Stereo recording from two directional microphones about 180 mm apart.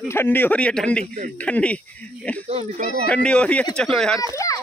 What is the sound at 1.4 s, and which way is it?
A man's voice, 5° left (ahead or behind).